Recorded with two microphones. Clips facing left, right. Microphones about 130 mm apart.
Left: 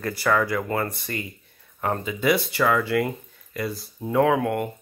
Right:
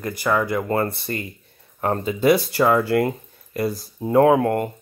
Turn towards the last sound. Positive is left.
turn(degrees=-40)  # may be behind; listen again after turning